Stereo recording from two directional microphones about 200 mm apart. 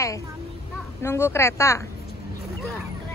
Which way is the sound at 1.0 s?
15° left (ahead or behind).